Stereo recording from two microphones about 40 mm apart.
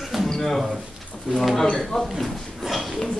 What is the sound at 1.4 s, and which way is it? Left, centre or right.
Speech, centre.